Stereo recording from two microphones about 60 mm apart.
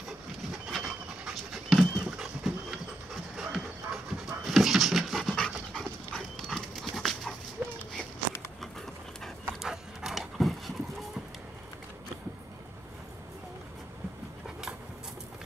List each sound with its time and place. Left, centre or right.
0.7 s dog: centre
7.6 s a sound: right
9.6 s dog: centre